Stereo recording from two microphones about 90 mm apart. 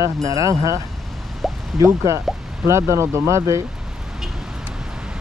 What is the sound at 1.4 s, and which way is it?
Drip, centre (ahead or behind).